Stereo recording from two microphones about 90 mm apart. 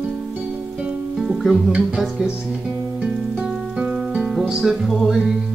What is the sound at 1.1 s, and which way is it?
Music, 5° right (ahead or behind).